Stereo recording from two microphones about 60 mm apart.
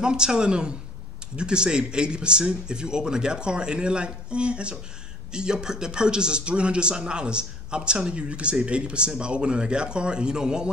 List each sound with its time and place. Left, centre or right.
0.0 s a man's voice: centre